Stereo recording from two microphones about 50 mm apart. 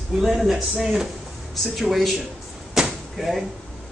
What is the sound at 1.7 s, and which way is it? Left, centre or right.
Speech, centre.